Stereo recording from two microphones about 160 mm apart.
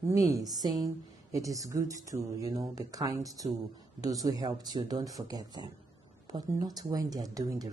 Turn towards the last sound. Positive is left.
turn(degrees=-25)  # may be behind; listen again after turning